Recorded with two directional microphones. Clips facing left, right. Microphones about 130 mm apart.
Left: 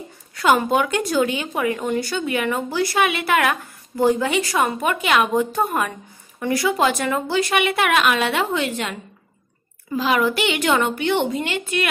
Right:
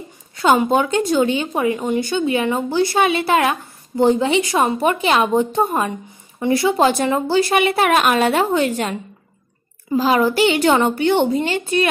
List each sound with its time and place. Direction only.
0.4 s speech: 25° right (ahead or behind)
9.9 s speech: 35° right (ahead or behind)